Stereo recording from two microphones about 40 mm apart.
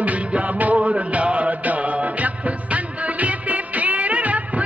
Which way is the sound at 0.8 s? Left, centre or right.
Right.